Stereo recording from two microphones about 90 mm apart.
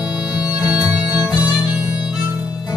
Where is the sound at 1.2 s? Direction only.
15° right (ahead or behind).